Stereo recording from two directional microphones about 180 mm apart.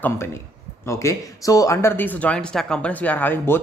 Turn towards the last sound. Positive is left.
turn(degrees=10)  # may be behind; listen again after turning